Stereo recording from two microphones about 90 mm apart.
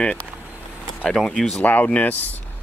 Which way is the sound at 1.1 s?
5° left (ahead or behind).